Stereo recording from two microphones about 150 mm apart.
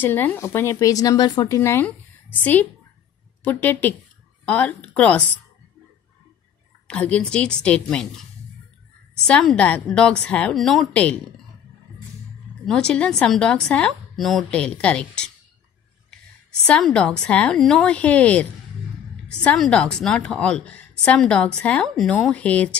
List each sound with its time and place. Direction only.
0.0 s speech: 10° left (ahead or behind)
6.9 s speech: 5° left (ahead or behind)
12.6 s a woman's voice: 5° left (ahead or behind)
16.6 s speech: 5° left (ahead or behind)